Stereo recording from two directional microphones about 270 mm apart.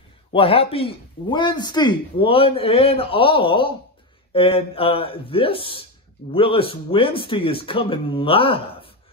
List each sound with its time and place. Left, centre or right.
0.3 s speech: centre